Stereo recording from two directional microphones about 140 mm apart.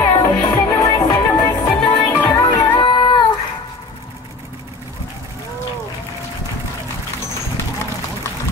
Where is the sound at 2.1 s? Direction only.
15° left (ahead or behind).